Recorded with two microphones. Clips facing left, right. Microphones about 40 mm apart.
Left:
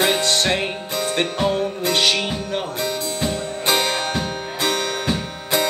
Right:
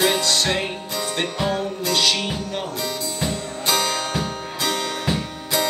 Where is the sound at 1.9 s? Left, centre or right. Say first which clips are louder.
Left 1 dB; left.